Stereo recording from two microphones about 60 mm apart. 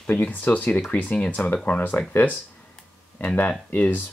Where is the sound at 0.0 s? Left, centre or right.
Left.